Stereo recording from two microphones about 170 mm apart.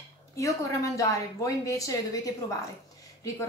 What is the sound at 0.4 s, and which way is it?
A woman's voice, 20° left (ahead or behind).